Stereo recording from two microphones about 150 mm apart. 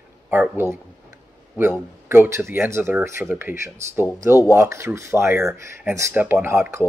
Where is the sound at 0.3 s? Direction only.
15° right (ahead or behind).